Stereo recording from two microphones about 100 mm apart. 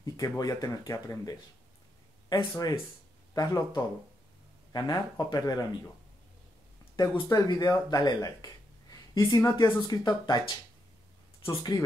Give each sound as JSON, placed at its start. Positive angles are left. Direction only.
{"t": 0.0, "sound": "speech", "side_deg": 35}
{"t": 7.0, "sound": "speech", "side_deg": 40}